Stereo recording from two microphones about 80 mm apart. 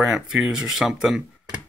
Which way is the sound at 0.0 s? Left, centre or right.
Centre.